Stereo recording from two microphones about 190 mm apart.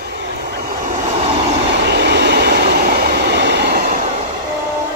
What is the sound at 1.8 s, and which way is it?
Train, 60° right (ahead or behind).